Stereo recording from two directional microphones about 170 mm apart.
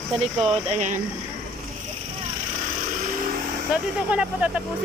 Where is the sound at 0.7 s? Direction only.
45° right (ahead or behind).